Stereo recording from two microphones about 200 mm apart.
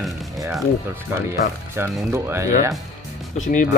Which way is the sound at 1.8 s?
10° right (ahead or behind).